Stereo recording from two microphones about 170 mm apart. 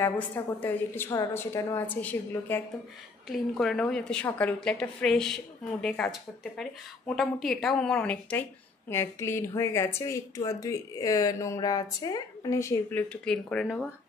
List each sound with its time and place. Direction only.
0.6 s a woman's voice: 10° left (ahead or behind)